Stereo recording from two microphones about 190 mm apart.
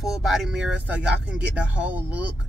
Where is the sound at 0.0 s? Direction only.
Centre (ahead or behind).